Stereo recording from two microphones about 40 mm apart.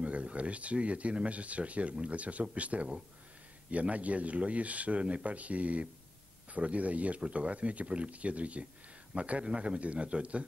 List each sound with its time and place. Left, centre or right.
0.0 s speech: right
3.9 s speech: right